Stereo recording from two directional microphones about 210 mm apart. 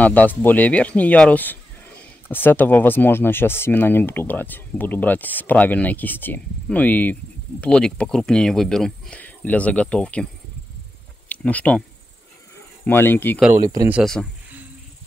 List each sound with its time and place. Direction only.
0.0 s speech: 5° left (ahead or behind)
11.2 s speech: 5° left (ahead or behind)
12.8 s speech: 10° left (ahead or behind)
13.6 s speech: 15° right (ahead or behind)
13.9 s a sound: centre (ahead or behind)